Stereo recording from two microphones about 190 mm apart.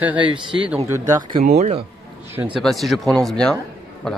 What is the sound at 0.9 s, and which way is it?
Speech, 20° right (ahead or behind).